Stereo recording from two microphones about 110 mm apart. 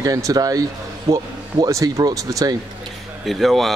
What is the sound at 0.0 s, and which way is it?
Speech, 35° right (ahead or behind).